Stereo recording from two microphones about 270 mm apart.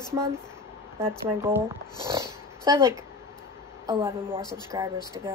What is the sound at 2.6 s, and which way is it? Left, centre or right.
Speech, centre.